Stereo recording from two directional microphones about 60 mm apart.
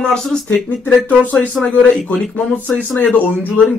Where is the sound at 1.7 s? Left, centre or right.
Centre.